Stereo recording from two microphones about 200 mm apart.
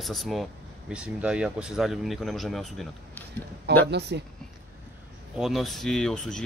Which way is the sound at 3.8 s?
60° right (ahead or behind).